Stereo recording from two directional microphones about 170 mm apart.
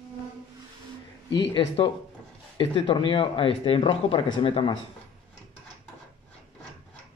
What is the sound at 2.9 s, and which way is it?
Speech, 30° left (ahead or behind).